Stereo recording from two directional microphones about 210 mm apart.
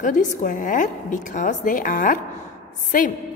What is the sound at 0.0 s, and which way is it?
A woman's voice, 40° left (ahead or behind).